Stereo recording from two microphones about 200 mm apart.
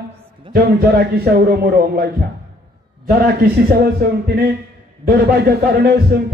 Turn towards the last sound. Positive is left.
turn(degrees=-50)  # may be behind; listen again after turning